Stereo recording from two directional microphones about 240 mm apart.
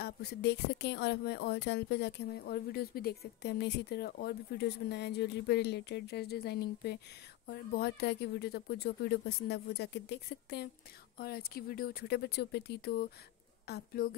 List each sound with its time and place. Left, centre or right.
0.0 s speech: left